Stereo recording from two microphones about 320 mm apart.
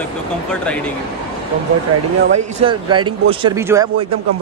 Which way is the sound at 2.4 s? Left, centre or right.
Centre.